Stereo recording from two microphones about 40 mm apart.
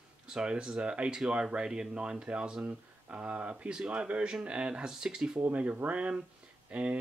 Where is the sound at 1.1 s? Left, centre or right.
Centre.